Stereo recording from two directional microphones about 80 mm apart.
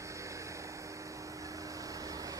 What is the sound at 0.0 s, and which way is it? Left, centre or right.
Vehicle, right.